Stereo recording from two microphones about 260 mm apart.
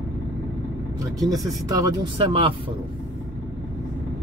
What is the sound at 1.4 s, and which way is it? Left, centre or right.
Speech, centre.